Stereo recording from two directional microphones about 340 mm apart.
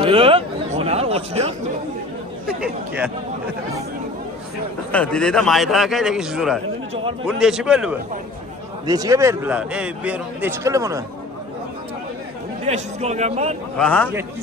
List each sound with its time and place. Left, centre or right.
0.0 s chatter: centre
4.9 s a man's voice: centre
12.6 s a man's voice: centre
13.7 s a man's voice: centre